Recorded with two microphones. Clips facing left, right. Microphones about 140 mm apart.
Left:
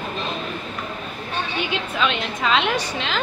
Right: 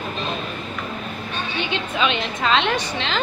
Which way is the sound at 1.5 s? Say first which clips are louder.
Right 2 dB; centre (ahead or behind).